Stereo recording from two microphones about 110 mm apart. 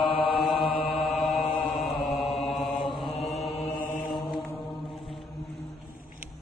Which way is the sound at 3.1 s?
70° left (ahead or behind).